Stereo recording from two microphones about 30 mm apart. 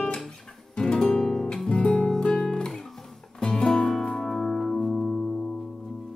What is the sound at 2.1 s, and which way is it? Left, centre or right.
Music, centre.